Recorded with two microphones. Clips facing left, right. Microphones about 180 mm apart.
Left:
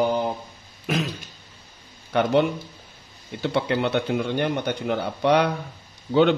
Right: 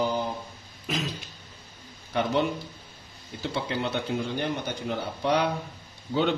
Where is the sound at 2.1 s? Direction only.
65° left (ahead or behind).